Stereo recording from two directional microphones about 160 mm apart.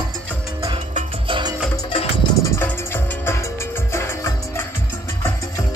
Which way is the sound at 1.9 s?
35° left (ahead or behind).